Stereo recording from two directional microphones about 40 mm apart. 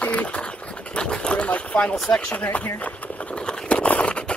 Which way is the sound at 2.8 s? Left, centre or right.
Left.